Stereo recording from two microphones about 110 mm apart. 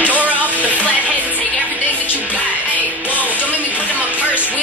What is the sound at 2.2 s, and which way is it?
A woman's voice, 15° right (ahead or behind).